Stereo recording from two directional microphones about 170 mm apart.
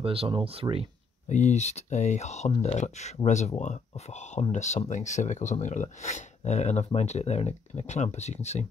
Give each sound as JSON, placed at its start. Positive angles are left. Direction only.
{"t": 0.0, "sound": "speech", "side_deg": -35}
{"t": 1.3, "sound": "speech", "side_deg": 45}